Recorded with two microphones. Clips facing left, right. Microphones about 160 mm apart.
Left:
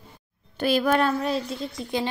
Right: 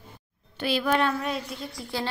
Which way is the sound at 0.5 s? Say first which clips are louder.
Left 3 dB; 45° left (ahead or behind).